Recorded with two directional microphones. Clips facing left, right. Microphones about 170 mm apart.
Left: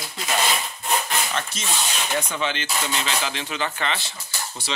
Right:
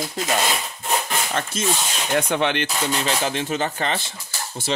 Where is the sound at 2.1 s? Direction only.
65° right (ahead or behind).